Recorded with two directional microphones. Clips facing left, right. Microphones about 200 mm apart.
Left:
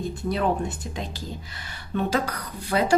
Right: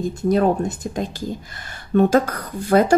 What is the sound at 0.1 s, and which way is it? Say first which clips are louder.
A woman's voice: right 8 dB; 45° right (ahead or behind).